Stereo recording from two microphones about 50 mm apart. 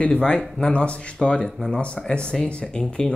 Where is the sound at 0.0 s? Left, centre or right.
Left.